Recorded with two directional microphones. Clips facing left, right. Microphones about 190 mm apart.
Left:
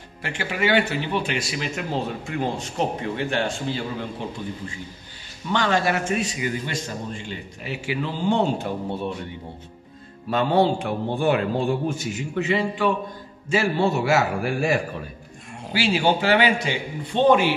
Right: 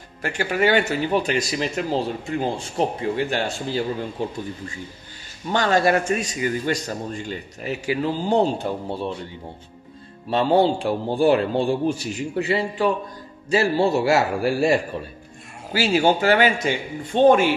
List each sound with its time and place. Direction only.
0.2 s speech: 45° right (ahead or behind)
5.5 s speech: 45° right (ahead or behind)
10.3 s a man's voice: 30° right (ahead or behind)